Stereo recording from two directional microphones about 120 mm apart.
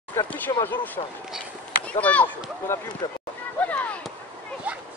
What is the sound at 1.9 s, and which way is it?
Speech, 10° left (ahead or behind).